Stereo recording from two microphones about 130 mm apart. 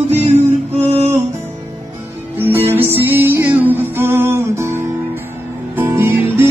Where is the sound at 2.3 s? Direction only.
15° right (ahead or behind).